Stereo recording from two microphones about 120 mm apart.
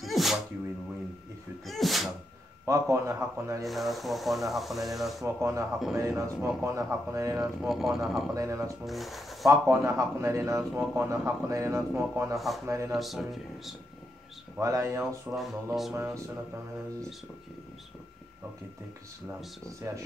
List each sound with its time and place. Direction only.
0.0 s sneeze: centre (ahead or behind)
1.7 s sneeze: centre (ahead or behind)
2.6 s speech: 25° right (ahead or behind)
3.6 s speech: centre (ahead or behind)
5.2 s speech: 25° right (ahead or behind)
7.6 s speech: centre (ahead or behind)
8.3 s speech: 25° right (ahead or behind)
8.8 s speech: centre (ahead or behind)
9.5 s speech: 25° right (ahead or behind)
11.1 s speech: 25° right (ahead or behind)
12.9 s speech: centre (ahead or behind)
14.6 s speech: 25° right (ahead or behind)
15.3 s speech: centre (ahead or behind)
15.9 s speech: 20° right (ahead or behind)